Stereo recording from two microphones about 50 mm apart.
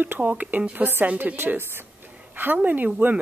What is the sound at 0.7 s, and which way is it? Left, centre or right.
Speech, right.